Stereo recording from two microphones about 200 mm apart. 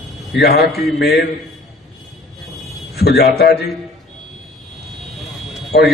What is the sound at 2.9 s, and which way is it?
Speech, 55° left (ahead or behind).